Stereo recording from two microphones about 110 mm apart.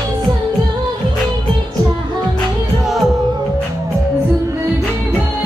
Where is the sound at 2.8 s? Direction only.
5° right (ahead or behind).